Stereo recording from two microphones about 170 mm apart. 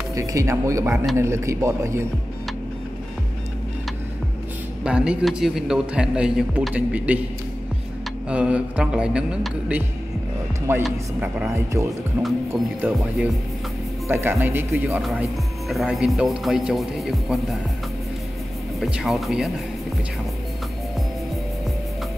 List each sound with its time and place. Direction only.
0.1 s speech: 20° right (ahead or behind)
4.8 s a man's voice: 5° right (ahead or behind)
8.3 s a man's voice: 5° right (ahead or behind)
14.0 s speech: 15° right (ahead or behind)
15.0 s a man's voice: centre (ahead or behind)
18.8 s speech: centre (ahead or behind)